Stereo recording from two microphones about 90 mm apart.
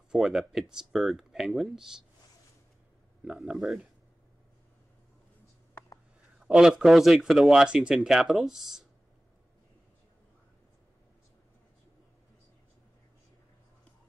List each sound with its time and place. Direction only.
0.1 s speech: 5° right (ahead or behind)
3.5 s speech: 5° right (ahead or behind)
6.4 s speech: 5° right (ahead or behind)